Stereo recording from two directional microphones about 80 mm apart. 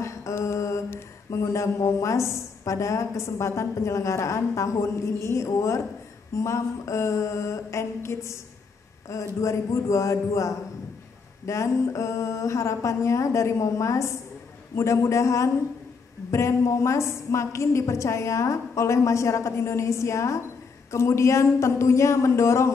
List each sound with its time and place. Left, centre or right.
0.0 s mantra: left
0.8 s a woman's voice: left